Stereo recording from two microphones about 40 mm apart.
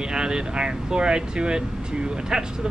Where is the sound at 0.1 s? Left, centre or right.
Centre.